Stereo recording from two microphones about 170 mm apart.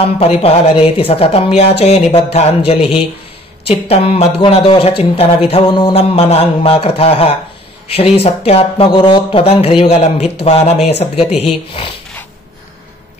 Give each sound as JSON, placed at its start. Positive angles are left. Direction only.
{"t": 0.0, "sound": "speech", "side_deg": 35}
{"t": 3.9, "sound": "speech", "side_deg": 35}